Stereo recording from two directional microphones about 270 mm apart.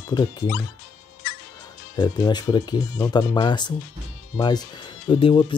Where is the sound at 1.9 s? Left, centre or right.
Centre.